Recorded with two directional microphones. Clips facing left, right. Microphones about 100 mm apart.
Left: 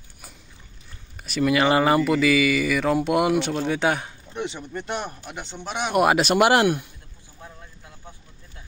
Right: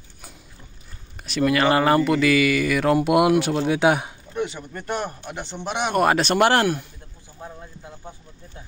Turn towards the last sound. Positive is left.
turn(degrees=-35)  # may be behind; listen again after turning